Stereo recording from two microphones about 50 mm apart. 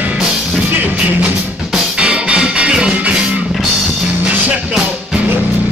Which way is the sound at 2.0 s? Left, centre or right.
Right.